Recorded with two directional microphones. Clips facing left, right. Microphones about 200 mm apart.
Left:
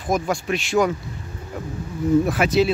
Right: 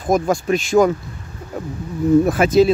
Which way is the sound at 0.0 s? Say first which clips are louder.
Right 5 dB; 45° right (ahead or behind).